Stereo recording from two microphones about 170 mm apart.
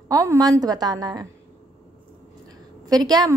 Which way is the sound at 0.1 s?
20° right (ahead or behind).